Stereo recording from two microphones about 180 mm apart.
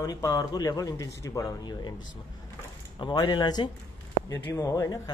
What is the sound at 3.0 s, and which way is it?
Speech, 25° left (ahead or behind).